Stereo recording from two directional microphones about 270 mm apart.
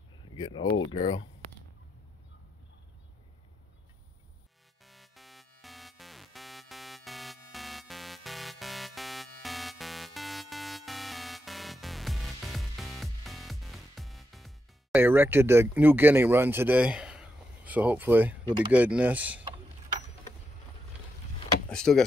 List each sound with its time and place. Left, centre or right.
0.4 s speech: centre
4.8 s music: centre
18.7 s speech: centre
21.6 s vehicle: centre